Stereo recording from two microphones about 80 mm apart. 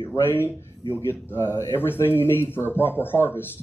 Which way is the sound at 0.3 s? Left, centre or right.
Left.